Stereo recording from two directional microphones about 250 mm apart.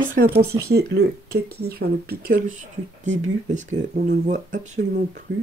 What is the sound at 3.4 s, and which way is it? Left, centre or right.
Speech, right.